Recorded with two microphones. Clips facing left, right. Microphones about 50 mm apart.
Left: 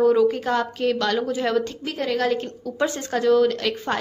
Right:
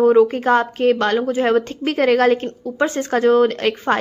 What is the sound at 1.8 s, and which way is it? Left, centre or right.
Speech, right.